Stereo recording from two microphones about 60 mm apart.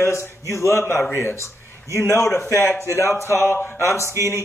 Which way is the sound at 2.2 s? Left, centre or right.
Centre.